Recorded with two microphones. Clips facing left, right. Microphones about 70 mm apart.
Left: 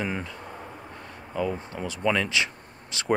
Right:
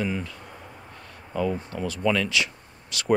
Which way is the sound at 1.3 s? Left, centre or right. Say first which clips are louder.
Right 2 dB; centre.